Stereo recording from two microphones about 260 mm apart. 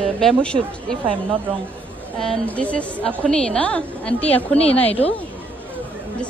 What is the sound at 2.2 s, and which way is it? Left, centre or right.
A woman's voice, centre.